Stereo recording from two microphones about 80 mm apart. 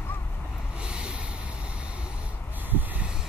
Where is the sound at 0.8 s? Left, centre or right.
Centre.